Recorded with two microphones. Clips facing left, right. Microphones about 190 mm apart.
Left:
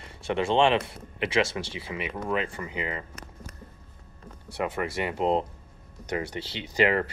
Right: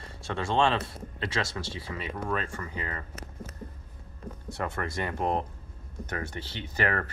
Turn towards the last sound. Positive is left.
turn(degrees=15)  # may be behind; listen again after turning